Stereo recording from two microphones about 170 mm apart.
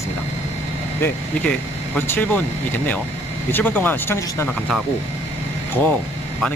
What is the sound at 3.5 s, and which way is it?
Speech, 10° left (ahead or behind).